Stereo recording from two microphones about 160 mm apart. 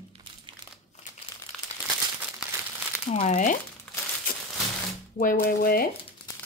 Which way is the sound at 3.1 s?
50° left (ahead or behind).